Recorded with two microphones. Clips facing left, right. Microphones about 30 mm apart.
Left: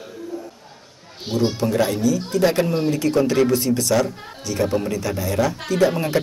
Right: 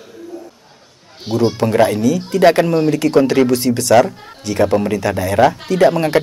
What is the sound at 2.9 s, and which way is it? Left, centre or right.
Speech, right.